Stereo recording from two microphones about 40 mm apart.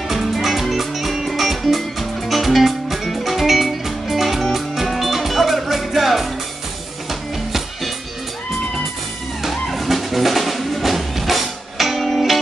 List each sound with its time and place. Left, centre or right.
0.1 s music: centre
9.4 s music: centre